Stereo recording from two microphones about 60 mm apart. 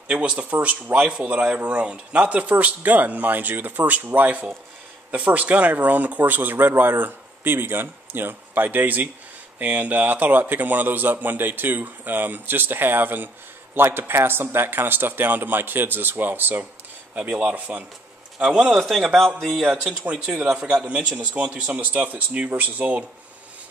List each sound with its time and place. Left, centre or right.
0.1 s a man's voice: centre
18.7 s a man's voice: centre
19.1 s speech: centre
19.5 s a man's voice: centre
20.1 s speech: centre